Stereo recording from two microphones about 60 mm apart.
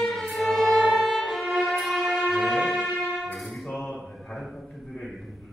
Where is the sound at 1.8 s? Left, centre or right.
Centre.